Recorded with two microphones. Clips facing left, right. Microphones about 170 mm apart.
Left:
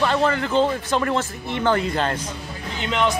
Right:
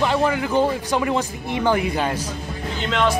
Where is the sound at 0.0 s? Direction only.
15° right (ahead or behind).